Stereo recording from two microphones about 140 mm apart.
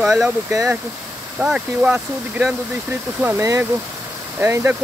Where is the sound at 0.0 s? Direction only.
Centre (ahead or behind).